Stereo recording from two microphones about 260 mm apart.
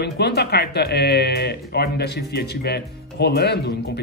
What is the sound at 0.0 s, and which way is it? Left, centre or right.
Speech, left.